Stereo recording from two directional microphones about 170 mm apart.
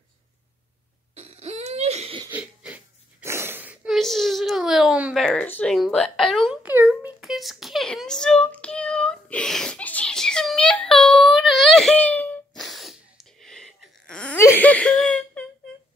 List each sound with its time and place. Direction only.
1.1 s cough: 40° right (ahead or behind)
2.2 s wheeze: 10° right (ahead or behind)
5.2 s a sound: 5° left (ahead or behind)
6.6 s a sound: 10° right (ahead or behind)
11.3 s wail: centre (ahead or behind)
14.4 s whimper: 10° left (ahead or behind)